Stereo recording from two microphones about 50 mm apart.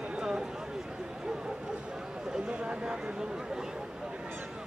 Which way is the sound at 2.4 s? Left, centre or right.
Centre.